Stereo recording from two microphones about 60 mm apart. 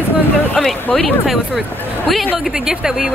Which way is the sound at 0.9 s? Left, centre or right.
Centre.